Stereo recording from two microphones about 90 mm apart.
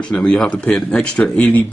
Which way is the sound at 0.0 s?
10° left (ahead or behind).